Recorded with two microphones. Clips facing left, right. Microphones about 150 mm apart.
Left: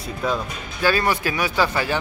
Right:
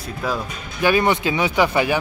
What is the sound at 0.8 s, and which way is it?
Speech, 20° right (ahead or behind).